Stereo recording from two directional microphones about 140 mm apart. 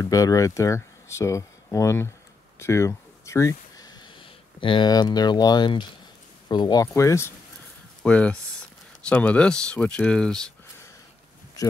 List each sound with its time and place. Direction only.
0.0 s speech: 25° left (ahead or behind)
8.0 s speech: 10° left (ahead or behind)